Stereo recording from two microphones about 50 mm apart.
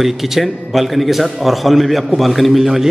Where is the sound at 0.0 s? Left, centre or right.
Centre.